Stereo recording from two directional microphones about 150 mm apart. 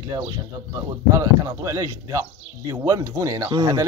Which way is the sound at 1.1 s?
20° right (ahead or behind).